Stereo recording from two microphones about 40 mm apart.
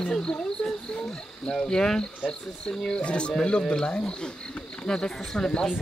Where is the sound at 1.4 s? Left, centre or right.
Left.